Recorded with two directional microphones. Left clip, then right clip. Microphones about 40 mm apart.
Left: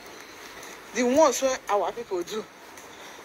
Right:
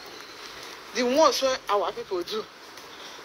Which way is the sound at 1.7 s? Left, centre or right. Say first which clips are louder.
Even; centre.